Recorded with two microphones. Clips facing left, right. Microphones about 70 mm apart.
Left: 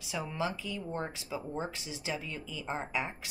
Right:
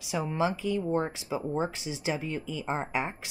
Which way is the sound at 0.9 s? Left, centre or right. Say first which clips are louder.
Right 8 dB; right.